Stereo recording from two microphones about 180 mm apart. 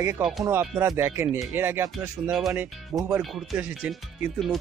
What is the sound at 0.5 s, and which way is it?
Speech, 15° right (ahead or behind).